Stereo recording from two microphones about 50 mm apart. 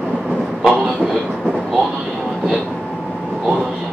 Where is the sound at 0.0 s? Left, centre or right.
Centre.